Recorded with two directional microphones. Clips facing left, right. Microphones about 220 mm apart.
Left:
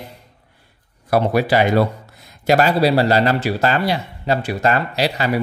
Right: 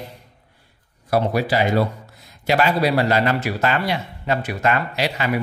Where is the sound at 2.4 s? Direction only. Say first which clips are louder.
Left 4 dB; 40° left (ahead or behind).